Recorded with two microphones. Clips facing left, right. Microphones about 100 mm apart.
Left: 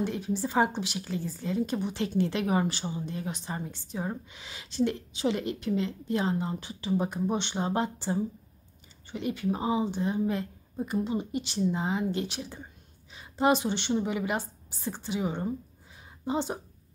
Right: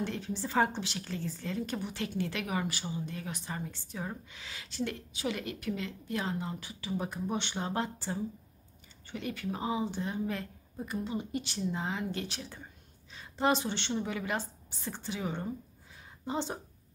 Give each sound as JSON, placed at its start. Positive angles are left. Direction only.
{"t": 0.0, "sound": "a woman's voice", "side_deg": 15}